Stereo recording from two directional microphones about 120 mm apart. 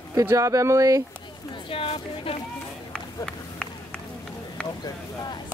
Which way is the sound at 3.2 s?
5° left (ahead or behind).